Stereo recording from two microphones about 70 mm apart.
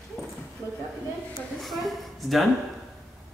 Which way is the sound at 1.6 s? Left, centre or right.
Centre.